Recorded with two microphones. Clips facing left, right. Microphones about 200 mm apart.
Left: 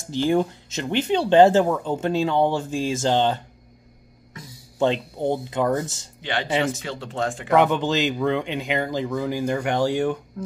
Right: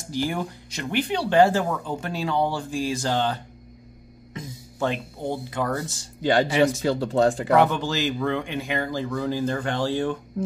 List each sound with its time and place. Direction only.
0.1 s speech: 25° left (ahead or behind)
4.3 s music: 20° right (ahead or behind)
4.7 s speech: 25° left (ahead or behind)
6.2 s speech: 40° right (ahead or behind)
7.5 s speech: 20° left (ahead or behind)